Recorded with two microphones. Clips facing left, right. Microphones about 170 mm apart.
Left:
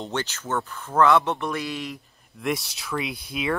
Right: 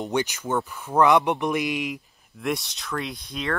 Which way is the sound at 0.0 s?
15° right (ahead or behind).